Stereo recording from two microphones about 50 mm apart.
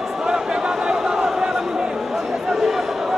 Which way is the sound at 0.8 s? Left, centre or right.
Centre.